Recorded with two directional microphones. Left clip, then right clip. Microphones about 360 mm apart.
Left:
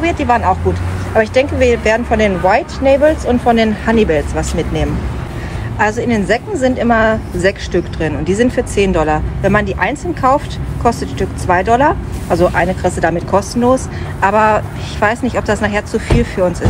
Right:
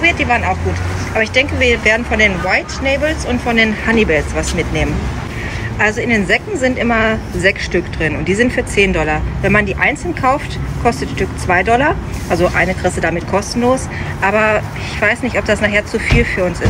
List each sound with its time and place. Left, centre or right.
0.0 s speech: centre
6.1 s a woman's voice: left
6.8 s speech: centre
8.3 s a woman's voice: left
8.7 s speech: centre